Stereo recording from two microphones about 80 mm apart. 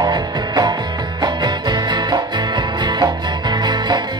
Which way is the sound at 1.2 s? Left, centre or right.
Right.